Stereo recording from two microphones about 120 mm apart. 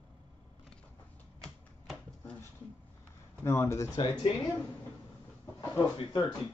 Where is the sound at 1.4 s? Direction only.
5° left (ahead or behind).